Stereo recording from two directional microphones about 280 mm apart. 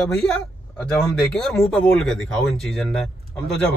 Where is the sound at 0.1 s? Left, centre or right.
Centre.